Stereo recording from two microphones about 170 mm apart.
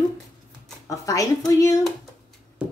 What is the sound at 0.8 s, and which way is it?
Speech, 20° left (ahead or behind).